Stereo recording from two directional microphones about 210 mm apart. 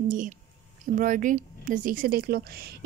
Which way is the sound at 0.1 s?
40° right (ahead or behind).